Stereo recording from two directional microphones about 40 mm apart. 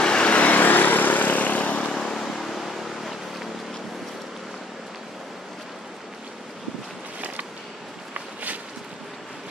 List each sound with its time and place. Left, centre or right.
0.0 s vehicle: left
0.6 s vehicle: left
1.9 s vehicle: centre
8.1 s a sound: right